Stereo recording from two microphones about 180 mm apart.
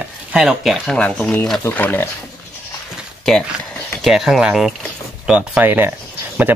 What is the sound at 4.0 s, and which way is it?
Speech, centre (ahead or behind).